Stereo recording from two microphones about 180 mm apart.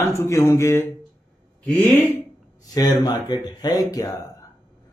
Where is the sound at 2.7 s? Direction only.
20° left (ahead or behind).